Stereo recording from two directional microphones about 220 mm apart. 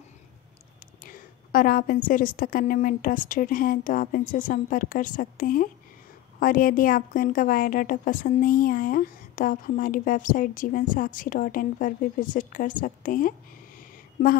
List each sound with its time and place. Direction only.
1.0 s a woman's voice: 40° left (ahead or behind)